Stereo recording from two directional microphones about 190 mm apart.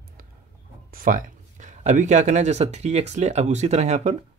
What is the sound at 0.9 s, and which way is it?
Speech, 45° right (ahead or behind).